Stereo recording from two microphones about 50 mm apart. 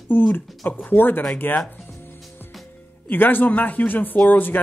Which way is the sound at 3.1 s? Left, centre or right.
Left.